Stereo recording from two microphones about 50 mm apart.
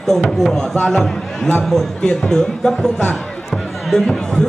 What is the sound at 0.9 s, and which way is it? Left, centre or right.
A man's voice, centre.